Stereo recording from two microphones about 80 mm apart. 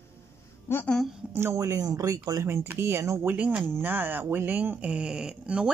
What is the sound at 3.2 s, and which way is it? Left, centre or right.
Speech, centre.